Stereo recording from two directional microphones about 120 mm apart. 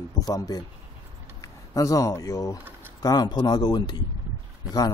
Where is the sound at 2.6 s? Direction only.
15° right (ahead or behind).